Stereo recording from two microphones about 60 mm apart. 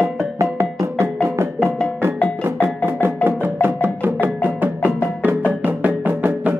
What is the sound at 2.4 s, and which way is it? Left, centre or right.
Music, right.